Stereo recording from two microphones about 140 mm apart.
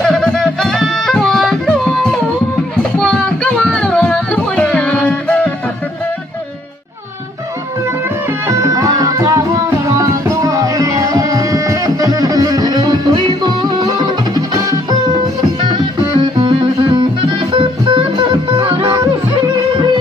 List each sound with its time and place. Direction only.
0.0 s music: 5° left (ahead or behind)
3.0 s music: 5° left (ahead or behind)
8.5 s music: 25° right (ahead or behind)
10.4 s music: 25° right (ahead or behind)